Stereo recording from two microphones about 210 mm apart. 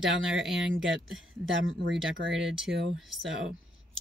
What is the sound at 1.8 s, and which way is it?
Speech, 60° right (ahead or behind).